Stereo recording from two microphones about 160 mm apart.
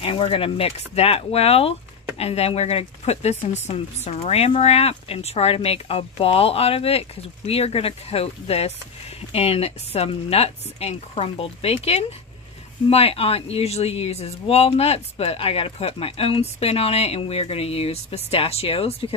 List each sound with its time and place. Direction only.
0.0 s speech: 35° left (ahead or behind)